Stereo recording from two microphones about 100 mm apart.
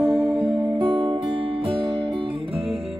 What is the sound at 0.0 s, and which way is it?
Music, centre (ahead or behind).